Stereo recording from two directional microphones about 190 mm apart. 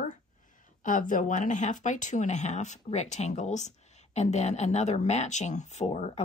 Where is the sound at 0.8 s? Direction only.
45° left (ahead or behind).